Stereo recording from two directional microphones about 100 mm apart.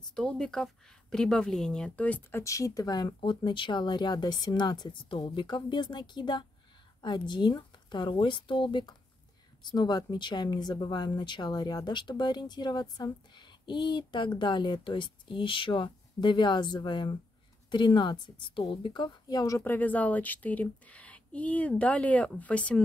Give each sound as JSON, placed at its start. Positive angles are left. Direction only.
{"t": 0.1, "sound": "speech", "side_deg": 5}
{"t": 2.4, "sound": "speech", "side_deg": 35}
{"t": 3.2, "sound": "speech", "side_deg": 55}
{"t": 19.6, "sound": "speech", "side_deg": 20}